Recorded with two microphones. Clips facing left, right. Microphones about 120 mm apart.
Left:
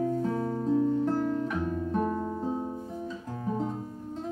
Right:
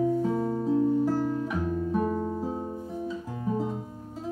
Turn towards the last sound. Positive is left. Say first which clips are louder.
# even
turn(degrees=-5)  # may be behind; listen again after turning